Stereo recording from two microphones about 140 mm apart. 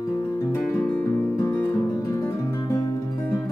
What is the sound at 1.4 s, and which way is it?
Music, 15° left (ahead or behind).